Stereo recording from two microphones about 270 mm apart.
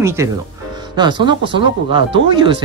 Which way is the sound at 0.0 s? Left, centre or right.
Centre.